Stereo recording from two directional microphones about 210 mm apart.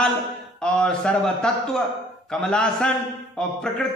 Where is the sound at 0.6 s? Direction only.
5° left (ahead or behind).